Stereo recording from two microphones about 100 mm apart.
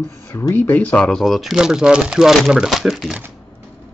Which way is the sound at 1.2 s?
Centre (ahead or behind).